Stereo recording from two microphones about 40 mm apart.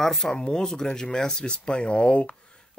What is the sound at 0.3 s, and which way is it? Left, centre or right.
Speech, centre.